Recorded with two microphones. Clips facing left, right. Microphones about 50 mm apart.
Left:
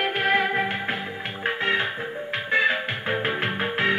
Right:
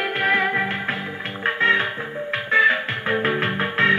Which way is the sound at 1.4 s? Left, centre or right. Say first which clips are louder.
Right 5 dB; right.